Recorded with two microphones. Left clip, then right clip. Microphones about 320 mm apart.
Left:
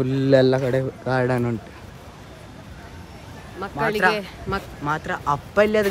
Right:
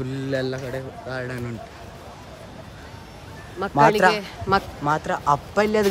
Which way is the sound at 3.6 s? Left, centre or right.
Right.